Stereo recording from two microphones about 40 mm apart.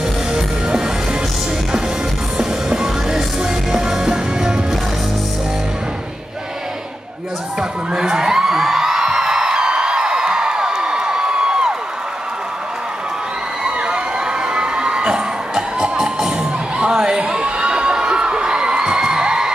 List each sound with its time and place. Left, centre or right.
2.3 s music: centre
7.9 s music: centre
13.7 s crowd: right
16.7 s a sound: right